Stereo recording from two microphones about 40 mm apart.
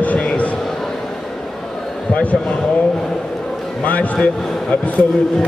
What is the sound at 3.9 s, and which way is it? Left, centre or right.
Speech, left.